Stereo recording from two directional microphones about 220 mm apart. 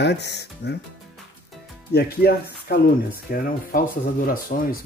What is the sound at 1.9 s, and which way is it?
Speech, 45° left (ahead or behind).